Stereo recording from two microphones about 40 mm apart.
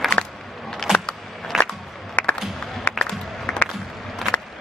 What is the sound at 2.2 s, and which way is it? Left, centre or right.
Music, left.